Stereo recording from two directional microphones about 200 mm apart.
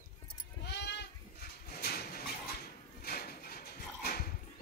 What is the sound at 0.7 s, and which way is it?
Goat, 55° left (ahead or behind).